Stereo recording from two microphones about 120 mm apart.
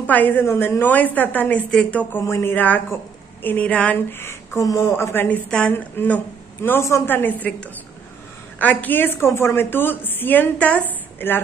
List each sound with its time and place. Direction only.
0.0 s a woman's voice: 15° left (ahead or behind)
8.5 s a woman's voice: 15° left (ahead or behind)
10.9 s a sound: 15° left (ahead or behind)